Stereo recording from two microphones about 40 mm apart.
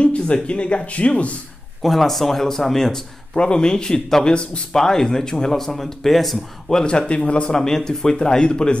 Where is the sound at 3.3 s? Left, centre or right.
Left; by 6.4 s centre.